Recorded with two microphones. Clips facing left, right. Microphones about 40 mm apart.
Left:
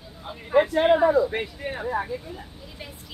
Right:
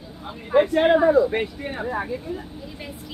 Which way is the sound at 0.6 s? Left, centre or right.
Centre.